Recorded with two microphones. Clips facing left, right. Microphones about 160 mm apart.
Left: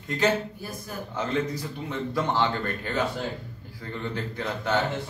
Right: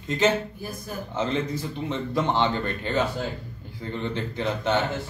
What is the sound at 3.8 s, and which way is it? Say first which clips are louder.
Speech: right 3 dB; 20° right (ahead or behind).